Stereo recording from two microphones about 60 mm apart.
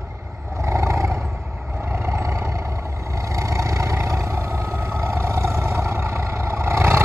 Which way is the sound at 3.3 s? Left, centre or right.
Right.